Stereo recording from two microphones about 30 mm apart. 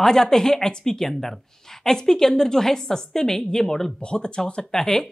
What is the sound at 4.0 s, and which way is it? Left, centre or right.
Speech, left.